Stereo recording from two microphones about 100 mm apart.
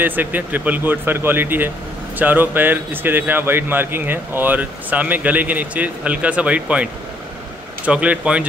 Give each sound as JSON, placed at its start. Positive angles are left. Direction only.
{"t": 0.0, "sound": "speech", "side_deg": -20}